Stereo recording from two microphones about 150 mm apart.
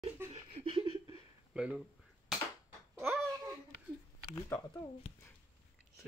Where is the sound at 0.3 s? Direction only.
40° right (ahead or behind).